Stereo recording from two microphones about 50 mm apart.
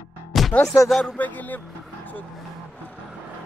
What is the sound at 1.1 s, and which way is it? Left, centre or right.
Speech, left.